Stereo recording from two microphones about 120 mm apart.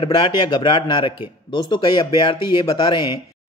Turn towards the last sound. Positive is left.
turn(degrees=40)  # may be behind; listen again after turning